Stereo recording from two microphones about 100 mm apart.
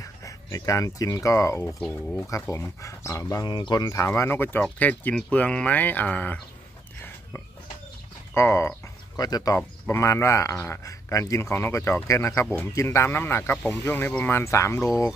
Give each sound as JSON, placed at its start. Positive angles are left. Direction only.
{"t": 0.0, "sound": "speech", "side_deg": 35}
{"t": 1.8, "sound": "speech", "side_deg": 5}
{"t": 2.5, "sound": "speech", "side_deg": 30}
{"t": 3.4, "sound": "speech", "side_deg": 50}
{"t": 3.9, "sound": "speech", "side_deg": 30}
{"t": 8.4, "sound": "speech", "side_deg": 25}
{"t": 9.1, "sound": "speech", "side_deg": 40}
{"t": 9.8, "sound": "speech", "side_deg": 25}